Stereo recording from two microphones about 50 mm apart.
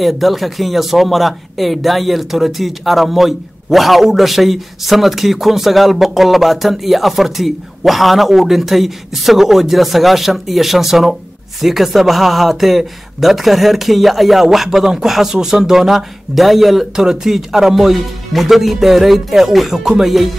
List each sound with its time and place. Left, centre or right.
0.0 s speech: centre